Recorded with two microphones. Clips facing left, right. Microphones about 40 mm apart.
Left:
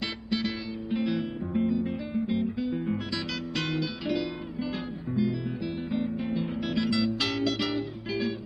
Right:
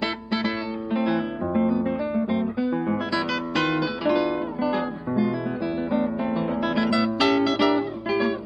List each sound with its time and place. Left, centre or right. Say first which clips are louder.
0.0 s music: right 5 dB; right
0.9 s guitar: right 5 dB; right
5.9 s music: right 5 dB; right